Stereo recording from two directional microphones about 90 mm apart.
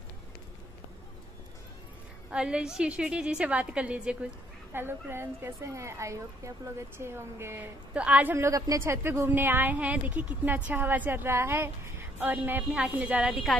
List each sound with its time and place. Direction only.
2.3 s a woman's voice: 10° right (ahead or behind)
4.7 s a woman's voice: 25° right (ahead or behind)
8.4 s a woman's voice: 35° right (ahead or behind); by 13.4 s 15° right (ahead or behind)